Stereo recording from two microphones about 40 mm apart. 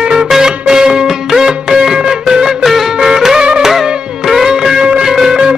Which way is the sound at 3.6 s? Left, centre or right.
Centre.